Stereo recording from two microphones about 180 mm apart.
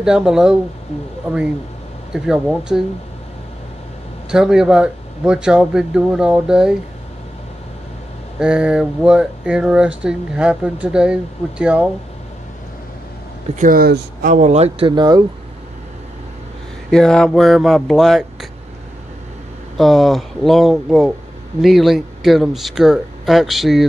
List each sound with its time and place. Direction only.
0.0 s speech: 5° right (ahead or behind)
2.1 s speech: 5° right (ahead or behind)
4.3 s speech: 5° right (ahead or behind)
8.4 s speech: 5° right (ahead or behind)
13.6 s speech: 55° right (ahead or behind); by 15.2 s 25° right (ahead or behind)
16.9 s speech: 5° left (ahead or behind)
19.8 s speech: centre (ahead or behind)